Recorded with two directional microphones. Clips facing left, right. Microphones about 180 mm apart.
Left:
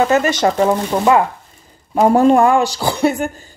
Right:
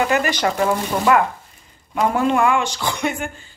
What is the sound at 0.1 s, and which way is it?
Speech, 20° left (ahead or behind).